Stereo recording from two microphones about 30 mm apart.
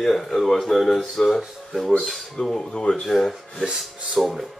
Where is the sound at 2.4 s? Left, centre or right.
Left.